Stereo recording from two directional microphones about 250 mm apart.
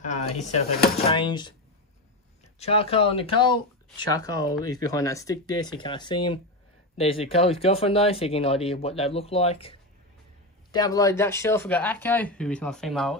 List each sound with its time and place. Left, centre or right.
0.0 s speech: left
2.6 s speech: left; by 13.2 s centre